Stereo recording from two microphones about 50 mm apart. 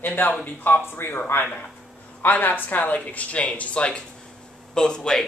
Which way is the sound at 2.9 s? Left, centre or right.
Left.